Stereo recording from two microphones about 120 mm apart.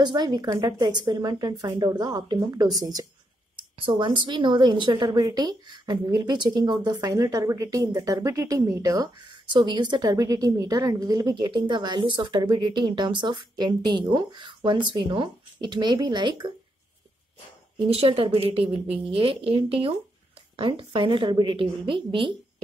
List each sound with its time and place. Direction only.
0.0 s a woman's voice: 35° right (ahead or behind)
3.8 s a woman's voice: 45° right (ahead or behind); by 9.1 s 25° right (ahead or behind)
9.5 s a woman's voice: 40° right (ahead or behind)
17.8 s a woman's voice: 55° right (ahead or behind)